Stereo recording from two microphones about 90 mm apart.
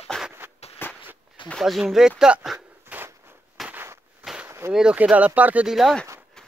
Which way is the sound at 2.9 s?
15° right (ahead or behind).